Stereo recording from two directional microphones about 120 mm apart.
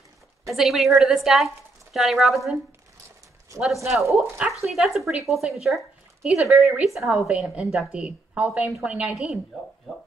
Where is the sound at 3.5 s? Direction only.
25° right (ahead or behind).